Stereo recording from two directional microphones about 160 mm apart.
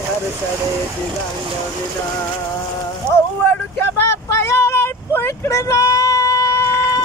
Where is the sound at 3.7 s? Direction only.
15° left (ahead or behind).